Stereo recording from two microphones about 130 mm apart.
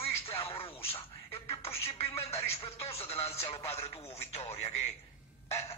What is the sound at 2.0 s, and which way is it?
Speech, 50° left (ahead or behind).